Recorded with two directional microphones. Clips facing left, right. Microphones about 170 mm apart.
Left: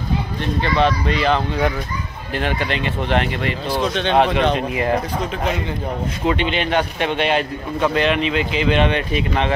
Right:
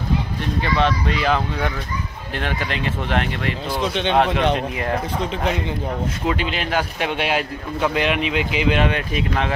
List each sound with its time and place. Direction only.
0.6 s a man's voice: centre (ahead or behind)
6.2 s a man's voice: centre (ahead or behind)